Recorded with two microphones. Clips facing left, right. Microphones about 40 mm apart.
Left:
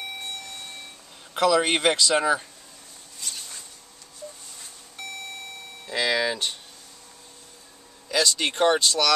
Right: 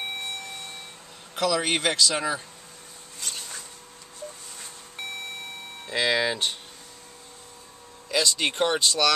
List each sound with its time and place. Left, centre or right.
1.3 s speech: centre
5.0 s beep: right
5.9 s speech: centre
8.1 s speech: centre